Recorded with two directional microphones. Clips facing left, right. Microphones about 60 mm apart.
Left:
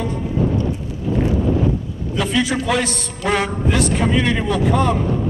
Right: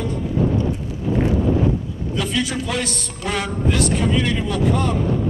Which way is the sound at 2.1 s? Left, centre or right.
Left.